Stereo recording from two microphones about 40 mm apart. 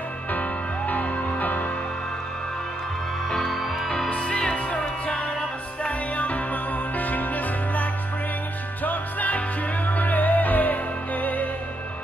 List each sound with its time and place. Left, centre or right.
0.3 s music: left
3.3 s music: centre
3.5 s music: centre
4.1 s music: left